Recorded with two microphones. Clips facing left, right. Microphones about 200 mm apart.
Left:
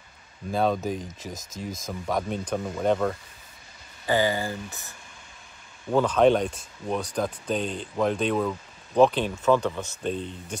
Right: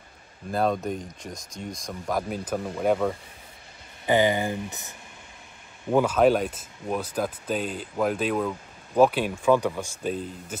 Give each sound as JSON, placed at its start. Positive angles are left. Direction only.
{"t": 0.5, "sound": "speech", "side_deg": 0}
{"t": 4.0, "sound": "speech", "side_deg": -20}